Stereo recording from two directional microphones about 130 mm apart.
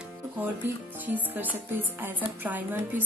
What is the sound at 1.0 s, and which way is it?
A woman's voice, 15° right (ahead or behind).